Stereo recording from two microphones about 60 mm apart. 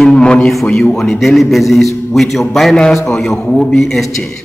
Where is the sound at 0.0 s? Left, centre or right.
Centre.